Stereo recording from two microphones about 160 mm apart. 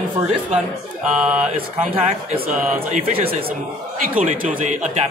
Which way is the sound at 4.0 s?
55° right (ahead or behind).